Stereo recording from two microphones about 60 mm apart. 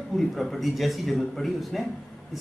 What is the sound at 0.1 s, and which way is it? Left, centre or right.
A man's voice, centre.